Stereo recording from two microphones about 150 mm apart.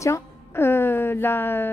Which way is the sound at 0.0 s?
15° left (ahead or behind).